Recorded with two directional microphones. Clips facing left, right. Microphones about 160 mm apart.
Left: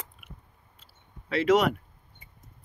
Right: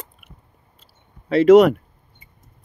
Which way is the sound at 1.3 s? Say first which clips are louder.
Right 11 dB; 40° right (ahead or behind).